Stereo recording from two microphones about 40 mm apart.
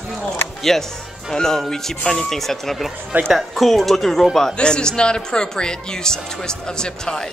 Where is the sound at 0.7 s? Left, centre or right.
Centre.